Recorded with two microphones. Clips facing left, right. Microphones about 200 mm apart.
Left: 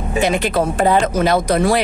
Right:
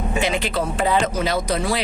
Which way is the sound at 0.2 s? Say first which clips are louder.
Left 7 dB; 45° left (ahead or behind).